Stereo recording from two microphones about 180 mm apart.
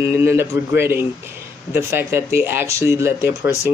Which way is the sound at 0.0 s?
10° right (ahead or behind).